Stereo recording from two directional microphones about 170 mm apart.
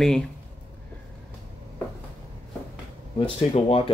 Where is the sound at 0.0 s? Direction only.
5° left (ahead or behind).